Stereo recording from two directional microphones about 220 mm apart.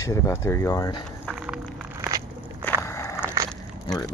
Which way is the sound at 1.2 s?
5° right (ahead or behind).